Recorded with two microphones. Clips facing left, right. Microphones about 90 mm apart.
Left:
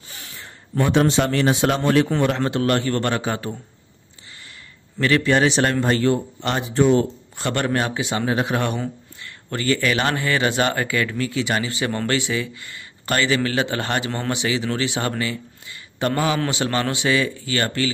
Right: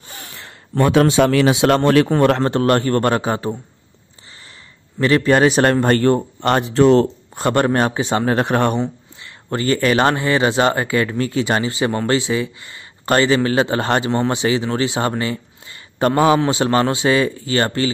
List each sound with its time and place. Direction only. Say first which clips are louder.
0.1 s a sound: right 4 dB; 50° right (ahead or behind)
0.4 s a man's voice: right 5 dB; 90° right
2.0 s speech: right 5 dB; 50° right (ahead or behind); by 3.5 s 35° right (ahead or behind)
5.0 s a man's voice: right 4 dB; 35° right (ahead or behind); by 7.1 s 90° right
7.3 s speech: right 6 dB; 40° right (ahead or behind)
8.3 s a man's voice: right 5 dB; 55° right (ahead or behind)
8.7 s speech: right 6 dB; 20° right (ahead or behind)